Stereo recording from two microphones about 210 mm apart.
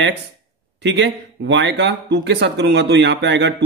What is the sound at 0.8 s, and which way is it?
Speech, 55° right (ahead or behind).